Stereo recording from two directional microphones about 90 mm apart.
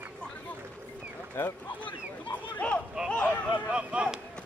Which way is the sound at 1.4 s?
25° left (ahead or behind).